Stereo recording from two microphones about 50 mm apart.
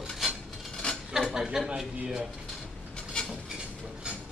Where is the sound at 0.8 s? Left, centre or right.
Centre.